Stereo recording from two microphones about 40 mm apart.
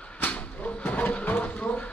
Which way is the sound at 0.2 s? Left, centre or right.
Left.